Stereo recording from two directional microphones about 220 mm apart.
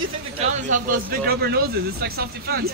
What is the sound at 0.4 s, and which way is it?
Speech, 35° right (ahead or behind).